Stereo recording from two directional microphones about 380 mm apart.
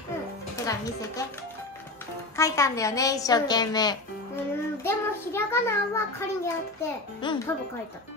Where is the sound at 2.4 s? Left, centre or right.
Centre.